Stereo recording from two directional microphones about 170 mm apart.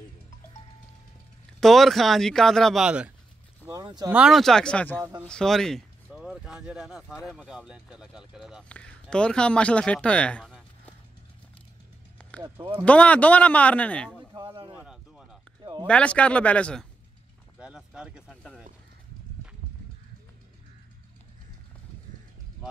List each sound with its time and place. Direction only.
1.6 s speech: centre (ahead or behind)
3.6 s speech: 25° right (ahead or behind)
4.1 s speech: 5° right (ahead or behind)
12.4 s speech: 30° right (ahead or behind)
12.8 s speech: 10° left (ahead or behind)
14.3 s a sound: 30° right (ahead or behind)
14.8 s a sound: 5° right (ahead or behind)
15.6 s speech: 25° right (ahead or behind)
15.9 s speech: 5° left (ahead or behind)
17.6 s speech: 5° right (ahead or behind)